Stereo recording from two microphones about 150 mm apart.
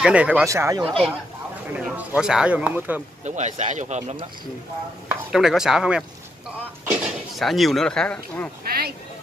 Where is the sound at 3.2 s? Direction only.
50° right (ahead or behind).